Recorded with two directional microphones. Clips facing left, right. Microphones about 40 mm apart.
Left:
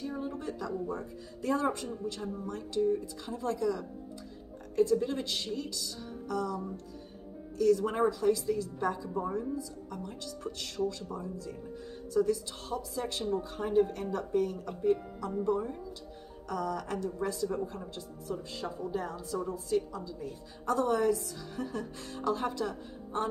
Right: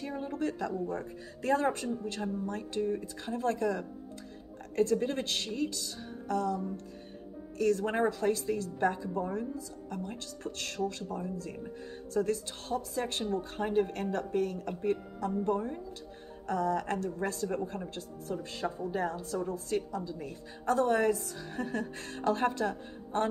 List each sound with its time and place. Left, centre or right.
0.0 s a woman's voice: right
4.7 s a woman's voice: right